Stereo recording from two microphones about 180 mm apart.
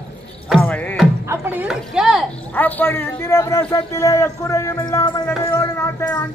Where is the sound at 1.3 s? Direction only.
10° right (ahead or behind).